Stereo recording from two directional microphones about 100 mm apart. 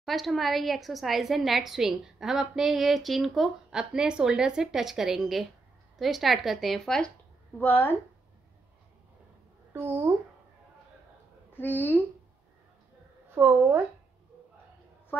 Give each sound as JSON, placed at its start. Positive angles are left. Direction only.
{"t": 0.0, "sound": "a woman's voice", "side_deg": 0}
{"t": 7.5, "sound": "a woman's voice", "side_deg": 20}
{"t": 9.7, "sound": "speech", "side_deg": -20}
{"t": 11.5, "sound": "a woman's voice", "side_deg": 20}
{"t": 13.3, "sound": "a woman's voice", "side_deg": -20}